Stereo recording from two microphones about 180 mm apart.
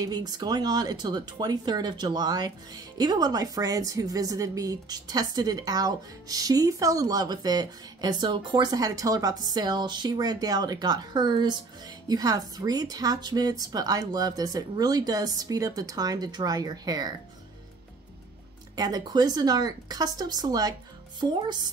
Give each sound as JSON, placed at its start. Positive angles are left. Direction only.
{"t": 0.0, "sound": "speech", "side_deg": -20}
{"t": 18.8, "sound": "speech", "side_deg": -20}